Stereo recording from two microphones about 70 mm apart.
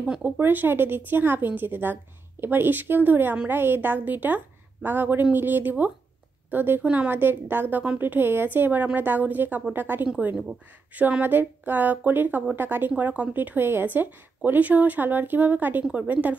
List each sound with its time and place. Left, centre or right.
0.2 s speech: right